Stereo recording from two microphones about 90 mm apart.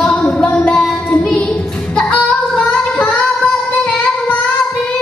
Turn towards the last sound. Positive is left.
turn(degrees=15)  # may be behind; listen again after turning